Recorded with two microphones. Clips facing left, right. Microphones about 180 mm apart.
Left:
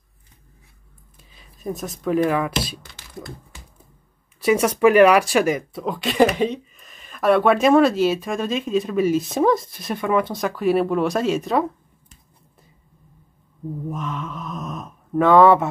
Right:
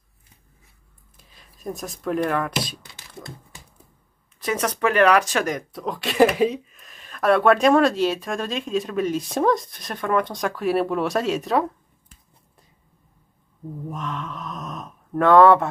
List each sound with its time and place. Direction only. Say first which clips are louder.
1.1 s speech: left 2 dB; centre (ahead or behind)
4.4 s speech: left 7 dB; 10° left (ahead or behind)
13.8 s speech: left 1 dB; centre (ahead or behind)